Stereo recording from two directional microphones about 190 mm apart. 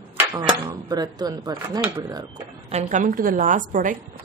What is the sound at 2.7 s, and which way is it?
A woman's voice, 40° right (ahead or behind).